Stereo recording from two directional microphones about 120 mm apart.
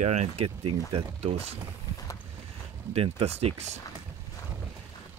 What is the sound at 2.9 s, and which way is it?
Speech, 55° right (ahead or behind).